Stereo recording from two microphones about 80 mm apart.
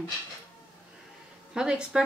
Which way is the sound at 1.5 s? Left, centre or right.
Centre.